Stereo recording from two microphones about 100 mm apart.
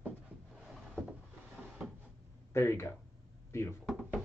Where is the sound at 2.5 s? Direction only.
25° left (ahead or behind).